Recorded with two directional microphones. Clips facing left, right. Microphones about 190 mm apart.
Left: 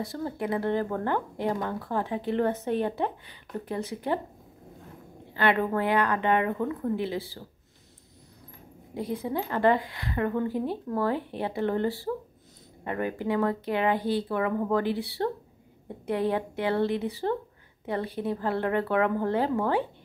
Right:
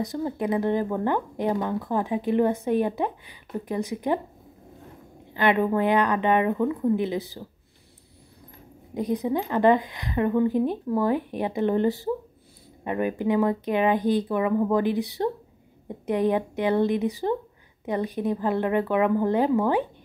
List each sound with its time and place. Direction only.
0.0 s speech: 15° right (ahead or behind)
5.3 s a woman's voice: 15° right (ahead or behind)
8.9 s speech: 20° right (ahead or behind)